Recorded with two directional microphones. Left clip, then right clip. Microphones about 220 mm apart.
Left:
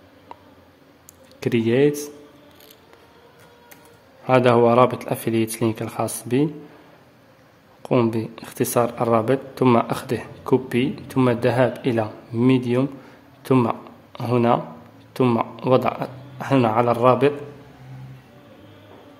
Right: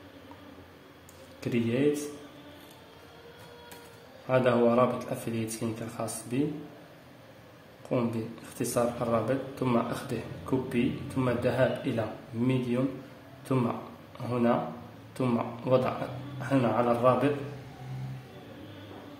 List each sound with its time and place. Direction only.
1.4 s speech: 50° left (ahead or behind)
4.3 s speech: 50° left (ahead or behind)
7.9 s a man's voice: 50° left (ahead or behind)